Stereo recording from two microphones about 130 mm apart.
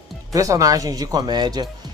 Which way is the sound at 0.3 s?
25° right (ahead or behind).